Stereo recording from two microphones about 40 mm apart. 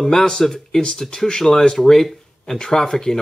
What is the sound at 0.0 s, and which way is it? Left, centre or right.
Speech, centre.